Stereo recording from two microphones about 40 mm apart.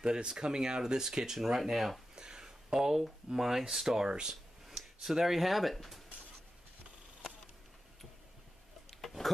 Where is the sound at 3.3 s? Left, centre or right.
Centre.